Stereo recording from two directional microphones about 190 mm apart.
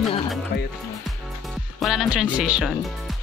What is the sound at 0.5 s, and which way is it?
Speech, 55° left (ahead or behind).